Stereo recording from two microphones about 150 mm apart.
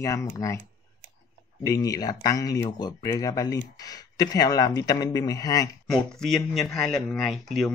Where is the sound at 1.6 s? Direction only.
25° left (ahead or behind).